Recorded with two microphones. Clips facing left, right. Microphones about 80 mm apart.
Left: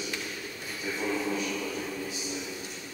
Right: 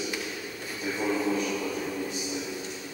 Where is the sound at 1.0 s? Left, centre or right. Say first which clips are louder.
Right 4 dB; centre.